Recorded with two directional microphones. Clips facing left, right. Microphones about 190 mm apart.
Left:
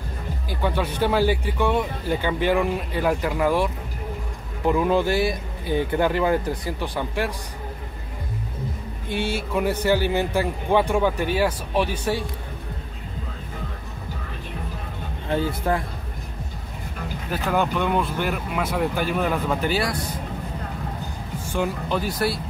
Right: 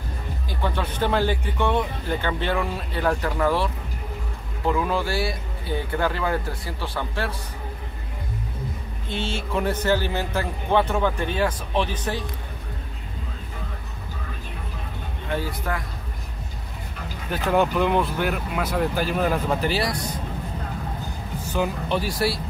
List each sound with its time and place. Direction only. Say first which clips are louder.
0.5 s speech: left 3 dB; 10° left (ahead or behind)
9.1 s speech: left 2 dB; 10° left (ahead or behind)
15.2 s speech: left 5 dB; 30° left (ahead or behind)
17.3 s speech: right 2 dB; centre (ahead or behind)